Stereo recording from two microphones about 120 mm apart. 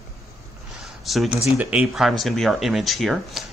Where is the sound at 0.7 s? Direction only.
Centre (ahead or behind).